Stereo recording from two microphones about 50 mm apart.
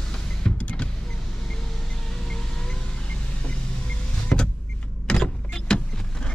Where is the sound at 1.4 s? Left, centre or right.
Centre; by 3.6 s left.